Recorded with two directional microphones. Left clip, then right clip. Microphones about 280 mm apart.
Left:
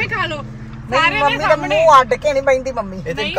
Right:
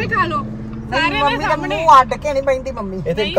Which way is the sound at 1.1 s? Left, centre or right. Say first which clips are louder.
Left 2 dB; centre.